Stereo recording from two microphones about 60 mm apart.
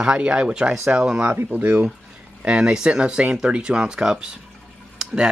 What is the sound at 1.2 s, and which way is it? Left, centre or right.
Speech, right.